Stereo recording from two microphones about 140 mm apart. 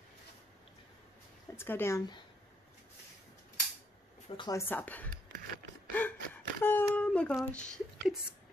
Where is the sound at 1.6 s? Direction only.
15° left (ahead or behind).